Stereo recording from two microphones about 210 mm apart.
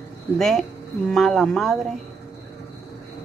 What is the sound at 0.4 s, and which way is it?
Speech, centre (ahead or behind).